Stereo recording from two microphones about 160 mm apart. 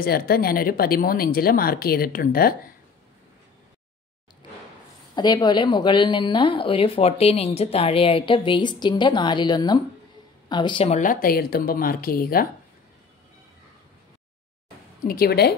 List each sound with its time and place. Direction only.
0.0 s speech: 70° left (ahead or behind)
5.1 s a woman's voice: 25° left (ahead or behind)
11.0 s speech: 60° left (ahead or behind)
15.0 s speech: 75° left (ahead or behind)